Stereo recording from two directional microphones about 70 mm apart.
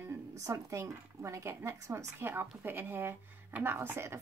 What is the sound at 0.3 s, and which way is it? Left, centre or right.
Speech, right.